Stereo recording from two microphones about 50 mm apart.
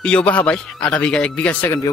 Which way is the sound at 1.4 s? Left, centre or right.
Left.